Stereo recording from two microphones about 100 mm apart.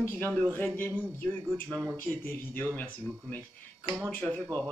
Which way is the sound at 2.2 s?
20° left (ahead or behind).